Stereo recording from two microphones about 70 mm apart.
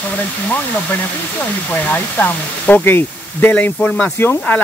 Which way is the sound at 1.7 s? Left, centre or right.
Left.